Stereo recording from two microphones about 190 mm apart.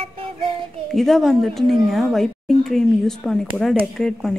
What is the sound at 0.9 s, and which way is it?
Speech, centre (ahead or behind).